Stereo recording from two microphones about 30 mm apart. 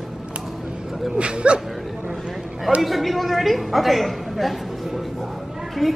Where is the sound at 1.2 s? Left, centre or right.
Right.